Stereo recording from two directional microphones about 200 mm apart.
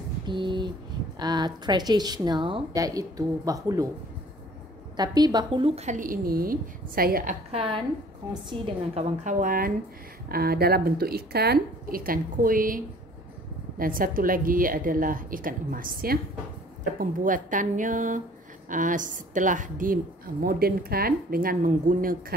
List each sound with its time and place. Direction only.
0.3 s a sound: 25° right (ahead or behind)
1.2 s a woman's voice: 20° right (ahead or behind)
4.9 s a woman's voice: 20° right (ahead or behind); by 7.3 s 45° right (ahead or behind)
7.5 s a woman's voice: 25° right (ahead or behind)
9.2 s a woman's voice: 40° right (ahead or behind)